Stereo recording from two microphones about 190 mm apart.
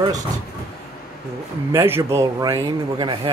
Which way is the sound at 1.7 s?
15° right (ahead or behind).